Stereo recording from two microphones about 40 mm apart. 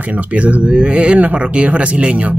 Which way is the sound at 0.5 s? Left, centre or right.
Right.